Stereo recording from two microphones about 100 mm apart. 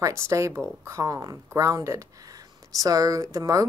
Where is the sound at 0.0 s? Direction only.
30° right (ahead or behind).